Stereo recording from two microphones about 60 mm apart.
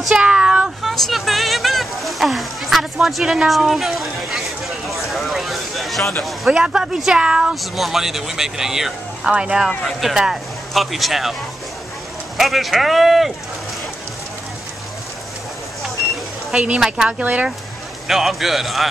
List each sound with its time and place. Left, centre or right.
0.1 s speech: centre
0.8 s a sound: centre
3.4 s speech: centre
6.5 s speech: centre
7.7 s speech: centre
9.8 s speech: centre
10.7 s speech: centre
12.4 s speech: centre
16.8 s speech: centre
17.2 s speech: right
18.0 s speech: centre